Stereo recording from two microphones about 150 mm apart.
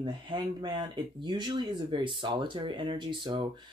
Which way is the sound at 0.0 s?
30° right (ahead or behind).